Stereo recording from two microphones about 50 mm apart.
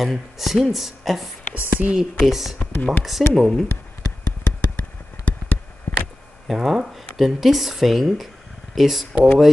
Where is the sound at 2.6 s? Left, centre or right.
Left.